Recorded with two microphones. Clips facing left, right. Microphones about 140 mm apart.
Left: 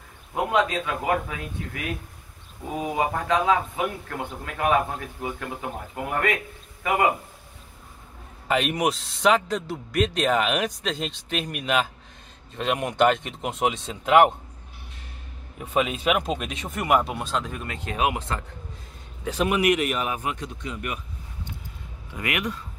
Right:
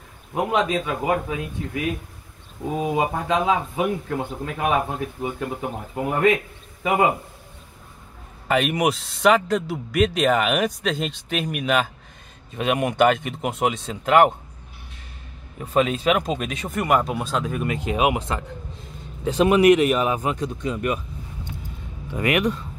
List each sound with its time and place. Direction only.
0.3 s speech: 10° right (ahead or behind)
3.0 s a man's voice: 10° right (ahead or behind)
8.5 s a man's voice: centre (ahead or behind)
15.6 s a man's voice: 5° left (ahead or behind)
17.6 s speech: 15° right (ahead or behind)
19.2 s speech: 30° right (ahead or behind)
22.1 s speech: 35° right (ahead or behind)